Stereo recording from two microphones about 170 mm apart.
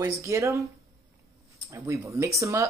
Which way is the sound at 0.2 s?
15° right (ahead or behind).